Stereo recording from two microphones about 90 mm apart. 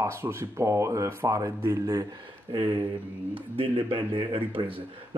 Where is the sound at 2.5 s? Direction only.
65° right (ahead or behind).